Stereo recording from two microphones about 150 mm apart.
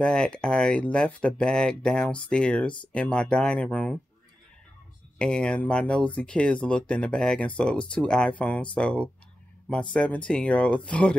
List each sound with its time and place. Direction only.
0.0 s speech: 5° left (ahead or behind)
5.2 s speech: 5° left (ahead or behind)